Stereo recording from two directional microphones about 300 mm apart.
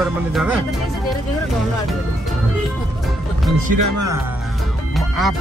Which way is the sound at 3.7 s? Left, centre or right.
Right.